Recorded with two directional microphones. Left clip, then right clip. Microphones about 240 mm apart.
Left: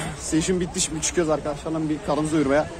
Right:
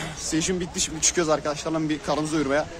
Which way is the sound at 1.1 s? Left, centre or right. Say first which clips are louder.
Left 2 dB; centre.